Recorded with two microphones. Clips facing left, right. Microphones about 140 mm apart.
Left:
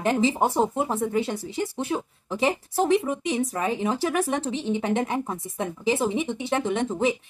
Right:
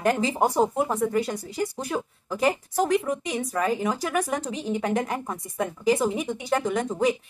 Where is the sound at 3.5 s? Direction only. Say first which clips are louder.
Right 1 dB; 25° left (ahead or behind).